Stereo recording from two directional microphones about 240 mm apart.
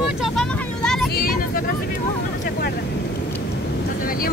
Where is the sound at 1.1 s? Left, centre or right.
Left.